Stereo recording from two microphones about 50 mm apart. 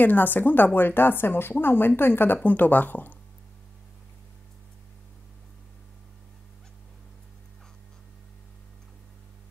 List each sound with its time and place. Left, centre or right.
0.0 s speech: left